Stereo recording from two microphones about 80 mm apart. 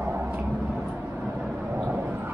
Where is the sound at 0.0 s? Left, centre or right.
Right.